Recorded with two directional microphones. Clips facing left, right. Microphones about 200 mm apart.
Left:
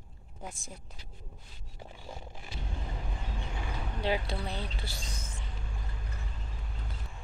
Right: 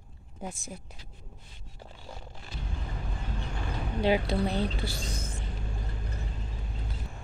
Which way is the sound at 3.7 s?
15° right (ahead or behind).